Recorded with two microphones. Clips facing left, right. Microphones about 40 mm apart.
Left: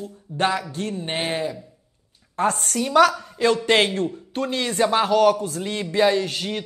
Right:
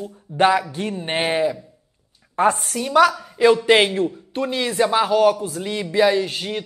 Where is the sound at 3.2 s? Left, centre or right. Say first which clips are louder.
Right 5 dB; centre.